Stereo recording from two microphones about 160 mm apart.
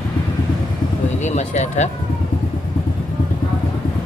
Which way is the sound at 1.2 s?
45° left (ahead or behind).